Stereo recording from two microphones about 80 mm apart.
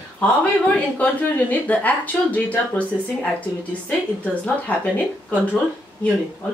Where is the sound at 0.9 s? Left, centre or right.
Centre.